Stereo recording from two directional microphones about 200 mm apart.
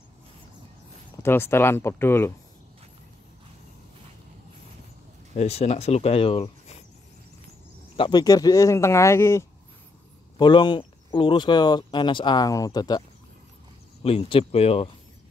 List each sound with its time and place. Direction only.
1.2 s speech: 10° left (ahead or behind)
5.3 s speech: 30° left (ahead or behind)
7.9 s speech: 25° left (ahead or behind)
14.0 s speech: 30° left (ahead or behind)